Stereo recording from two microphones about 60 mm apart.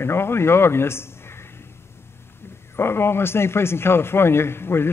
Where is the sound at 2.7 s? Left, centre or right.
Left.